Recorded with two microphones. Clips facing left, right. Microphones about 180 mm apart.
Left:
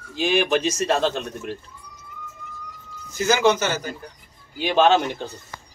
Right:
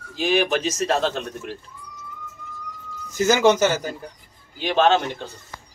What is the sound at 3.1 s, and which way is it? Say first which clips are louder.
Speech: right 2 dB; 45° right (ahead or behind).